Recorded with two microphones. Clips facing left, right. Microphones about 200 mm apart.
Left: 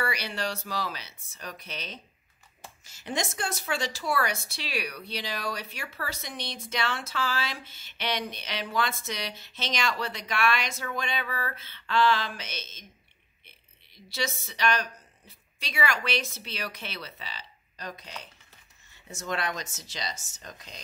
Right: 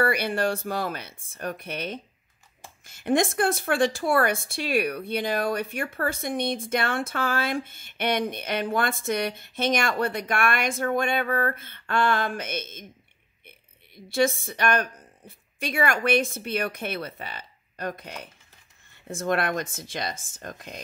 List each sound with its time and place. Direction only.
0.0 s a woman's voice: 55° right (ahead or behind)